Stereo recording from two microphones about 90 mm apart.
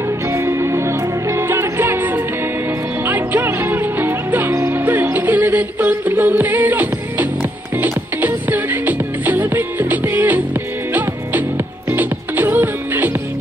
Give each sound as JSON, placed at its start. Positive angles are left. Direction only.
{"t": 0.3, "sound": "music", "side_deg": -30}